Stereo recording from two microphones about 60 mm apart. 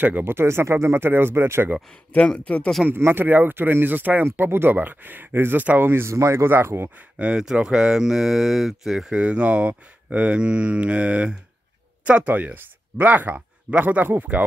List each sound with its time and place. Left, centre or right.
0.2 s speech: right
2.1 s speech: left
2.9 s speech: right
6.1 s speech: right
6.4 s speech: right
7.2 s speech: right; by 9.1 s centre
9.1 s speech: centre